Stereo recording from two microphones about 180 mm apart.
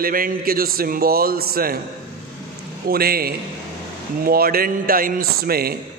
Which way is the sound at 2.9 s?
55° right (ahead or behind).